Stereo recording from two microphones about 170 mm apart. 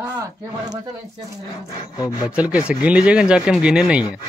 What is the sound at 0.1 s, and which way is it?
Speech, 20° right (ahead or behind).